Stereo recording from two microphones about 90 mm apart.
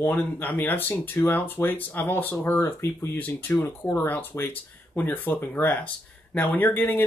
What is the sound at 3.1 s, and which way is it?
Speech, 20° left (ahead or behind).